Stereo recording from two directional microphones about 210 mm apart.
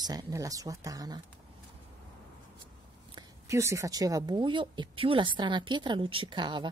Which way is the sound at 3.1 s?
15° right (ahead or behind).